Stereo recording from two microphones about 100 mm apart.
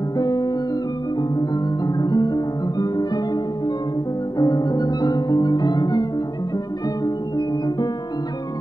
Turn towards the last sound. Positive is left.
turn(degrees=40)  # may be behind; listen again after turning